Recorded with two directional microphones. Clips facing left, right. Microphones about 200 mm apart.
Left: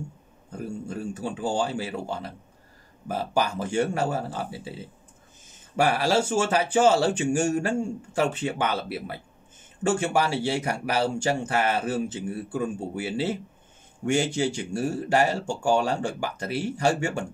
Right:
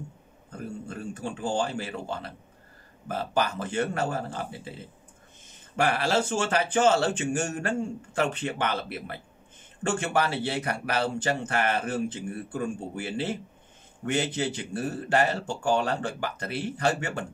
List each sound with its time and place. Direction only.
0.5 s a sound: 10° left (ahead or behind)
1.6 s speech: 10° left (ahead or behind)
5.8 s speech: 10° left (ahead or behind)